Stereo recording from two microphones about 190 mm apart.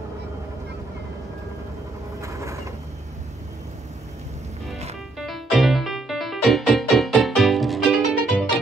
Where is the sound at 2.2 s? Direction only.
15° right (ahead or behind).